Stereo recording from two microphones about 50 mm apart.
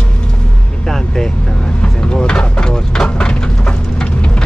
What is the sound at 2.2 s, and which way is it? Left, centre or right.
Speech, centre.